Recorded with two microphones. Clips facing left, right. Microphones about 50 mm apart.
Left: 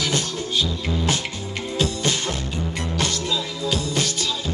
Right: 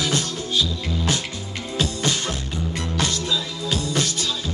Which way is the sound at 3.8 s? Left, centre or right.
Right.